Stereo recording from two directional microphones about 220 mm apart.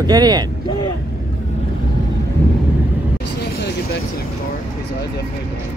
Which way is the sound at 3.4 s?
50° left (ahead or behind).